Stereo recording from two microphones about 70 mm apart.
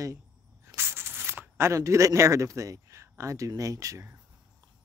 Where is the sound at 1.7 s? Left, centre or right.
Right.